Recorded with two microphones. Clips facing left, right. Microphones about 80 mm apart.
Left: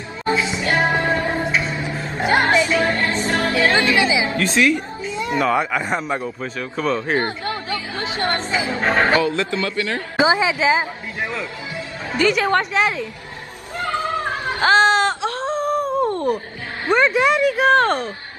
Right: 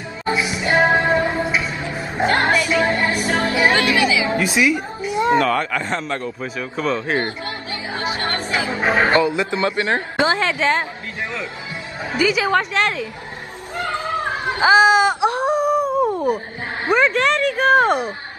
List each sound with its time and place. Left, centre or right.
0.2 s music: centre
2.4 s music: centre
2.8 s music: centre
3.7 s music: left
4.4 s a woman's voice: centre
5.4 s a man's voice: centre
7.2 s speech: left
8.2 s chatter: left
8.8 s a man's voice: centre; by 10.0 s right
10.1 s a man's voice: centre
12.1 s speech: centre
14.6 s wail: centre
16.9 s speech: centre